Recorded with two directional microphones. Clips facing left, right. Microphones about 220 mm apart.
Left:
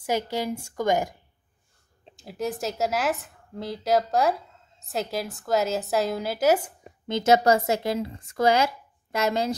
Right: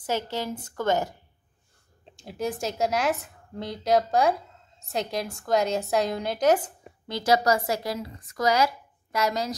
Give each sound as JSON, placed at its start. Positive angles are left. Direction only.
{"t": 0.0, "sound": "a woman's voice", "side_deg": 10}
{"t": 2.1, "sound": "a woman's voice", "side_deg": 0}
{"t": 7.1, "sound": "speech", "side_deg": 25}